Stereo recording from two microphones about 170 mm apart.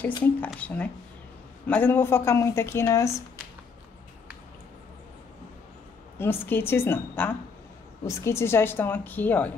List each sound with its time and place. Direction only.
0.0 s speech: 10° left (ahead or behind)
6.1 s speech: 10° left (ahead or behind)